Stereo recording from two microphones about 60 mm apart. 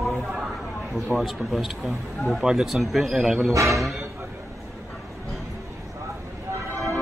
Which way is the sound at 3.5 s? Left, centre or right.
Right.